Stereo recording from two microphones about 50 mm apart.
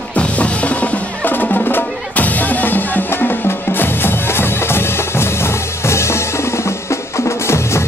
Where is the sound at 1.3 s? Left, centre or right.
Left.